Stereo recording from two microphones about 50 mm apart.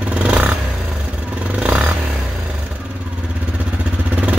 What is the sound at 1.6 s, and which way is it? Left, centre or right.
Vehicle, right.